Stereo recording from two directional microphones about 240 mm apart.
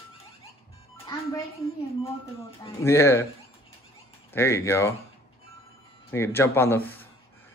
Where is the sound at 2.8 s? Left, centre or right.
Centre.